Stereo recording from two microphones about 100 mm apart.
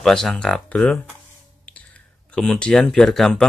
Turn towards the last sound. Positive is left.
turn(degrees=5)  # may be behind; listen again after turning